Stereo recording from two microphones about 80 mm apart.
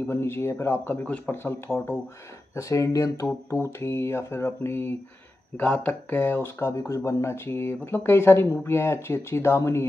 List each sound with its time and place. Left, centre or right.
0.0 s speech: left
1.0 s speech: centre
1.3 s speech: left